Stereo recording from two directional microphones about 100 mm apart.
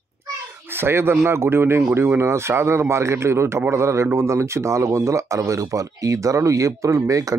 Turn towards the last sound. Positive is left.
turn(degrees=-35)  # may be behind; listen again after turning